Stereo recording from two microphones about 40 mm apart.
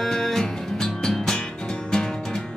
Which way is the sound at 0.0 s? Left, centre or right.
Centre.